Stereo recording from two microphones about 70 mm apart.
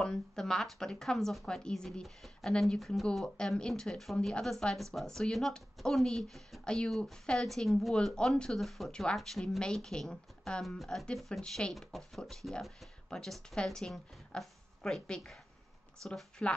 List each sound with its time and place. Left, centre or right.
0.0 s a woman's voice: centre
10.6 s a woman's voice: centre